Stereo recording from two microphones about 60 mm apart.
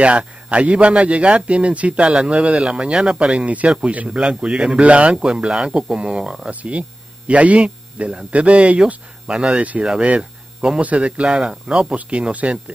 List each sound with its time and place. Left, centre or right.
0.0 s a man's voice: centre
6.4 s hum: right
10.0 s a man's voice: centre